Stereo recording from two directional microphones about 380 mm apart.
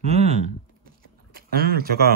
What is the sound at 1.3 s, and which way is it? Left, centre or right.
Speech, right.